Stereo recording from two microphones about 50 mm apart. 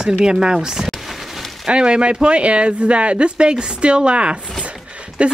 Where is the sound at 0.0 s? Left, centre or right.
Centre.